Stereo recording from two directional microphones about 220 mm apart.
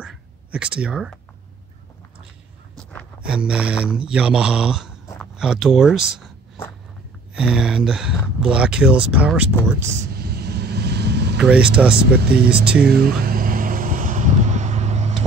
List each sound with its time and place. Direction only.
0.0 s whispering: 5° right (ahead or behind)
3.2 s mantra: 5° right (ahead or behind)
7.3 s mantra: 5° right (ahead or behind)
10.1 s vehicle: 45° right (ahead or behind)
11.3 s mantra: 5° right (ahead or behind)
12.0 s speech: 45° right (ahead or behind)
12.8 s vehicle: 45° right (ahead or behind)